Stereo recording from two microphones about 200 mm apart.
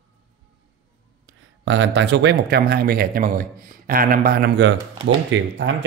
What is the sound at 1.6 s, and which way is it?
Speech, 65° right (ahead or behind).